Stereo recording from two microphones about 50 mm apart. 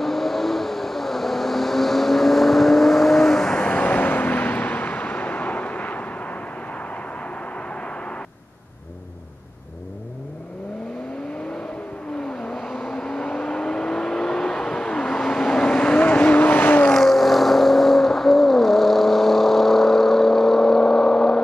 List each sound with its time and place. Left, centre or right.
0.0 s vehicle: centre
3.5 s vehicle: left
3.8 s vehicle: left
12.3 s vehicle: centre; by 16.8 s left
16.9 s vehicle: centre